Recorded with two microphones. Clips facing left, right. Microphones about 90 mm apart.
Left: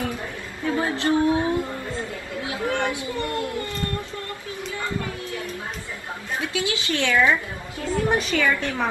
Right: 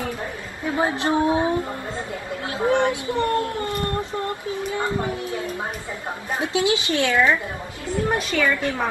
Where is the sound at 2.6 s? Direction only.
20° right (ahead or behind).